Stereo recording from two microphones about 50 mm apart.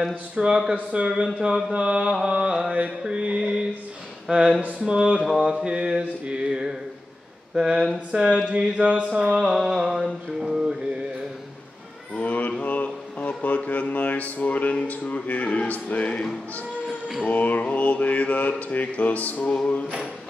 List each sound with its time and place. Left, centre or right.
0.1 s a sound: centre
4.7 s mantra: centre
8.1 s a sound: centre
9.3 s mantra: centre
12.2 s mantra: left
17.3 s mantra: left